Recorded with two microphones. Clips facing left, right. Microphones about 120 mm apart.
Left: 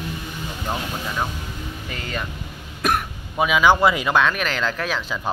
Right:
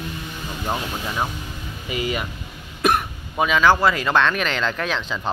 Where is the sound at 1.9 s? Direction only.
10° right (ahead or behind).